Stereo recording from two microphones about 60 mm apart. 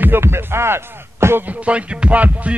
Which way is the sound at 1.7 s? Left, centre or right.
Right.